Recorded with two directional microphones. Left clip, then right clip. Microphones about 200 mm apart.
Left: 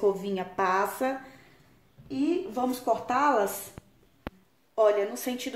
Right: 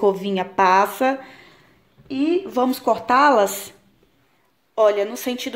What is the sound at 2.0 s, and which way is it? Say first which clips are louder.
Speech: right 7 dB; 50° right (ahead or behind).